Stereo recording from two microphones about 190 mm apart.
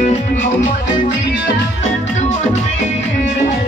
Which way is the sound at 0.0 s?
35° left (ahead or behind).